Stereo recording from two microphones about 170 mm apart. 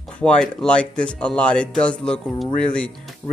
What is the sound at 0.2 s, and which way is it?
Speech, 5° left (ahead or behind).